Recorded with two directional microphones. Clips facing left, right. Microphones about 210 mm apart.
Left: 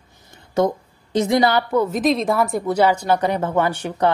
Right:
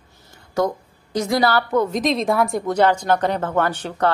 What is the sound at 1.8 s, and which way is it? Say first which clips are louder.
A woman's voice: left 1 dB; centre (ahead or behind).